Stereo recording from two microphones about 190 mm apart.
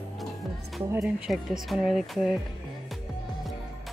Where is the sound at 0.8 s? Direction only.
15° right (ahead or behind).